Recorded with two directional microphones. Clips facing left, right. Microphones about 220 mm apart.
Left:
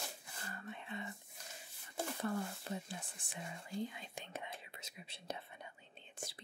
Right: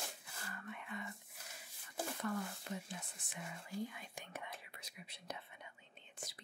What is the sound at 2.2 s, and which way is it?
Whispering, 30° left (ahead or behind).